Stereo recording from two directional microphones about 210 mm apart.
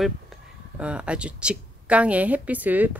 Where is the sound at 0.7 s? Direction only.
5° right (ahead or behind).